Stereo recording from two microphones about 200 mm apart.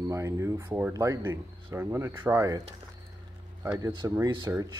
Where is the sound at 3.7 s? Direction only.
15° right (ahead or behind).